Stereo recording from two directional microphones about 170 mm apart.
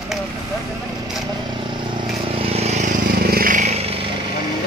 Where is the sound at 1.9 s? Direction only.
35° right (ahead or behind).